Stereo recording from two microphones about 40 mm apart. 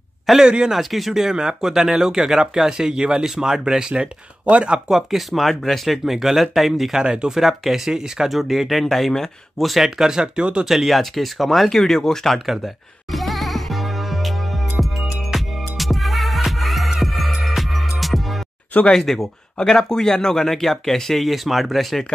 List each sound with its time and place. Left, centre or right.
0.4 s speech: right
0.7 s speech: centre
1.1 s speech: centre
5.1 s speech: centre
7.0 s speech: right
7.3 s speech: centre
9.8 s speech: centre
10.6 s speech: centre
11.7 s speech: centre
12.4 s music: centre
18.9 s speech: centre